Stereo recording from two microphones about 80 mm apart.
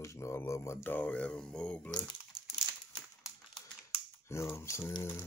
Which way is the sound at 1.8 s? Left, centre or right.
Left.